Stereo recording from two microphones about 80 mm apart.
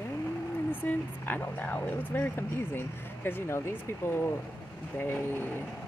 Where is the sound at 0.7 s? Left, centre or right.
Left.